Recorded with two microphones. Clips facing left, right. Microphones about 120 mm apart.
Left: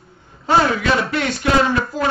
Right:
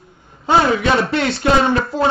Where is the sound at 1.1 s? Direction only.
30° right (ahead or behind).